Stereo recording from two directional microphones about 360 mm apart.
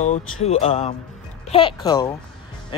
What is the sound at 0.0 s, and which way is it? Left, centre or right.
Speech, centre.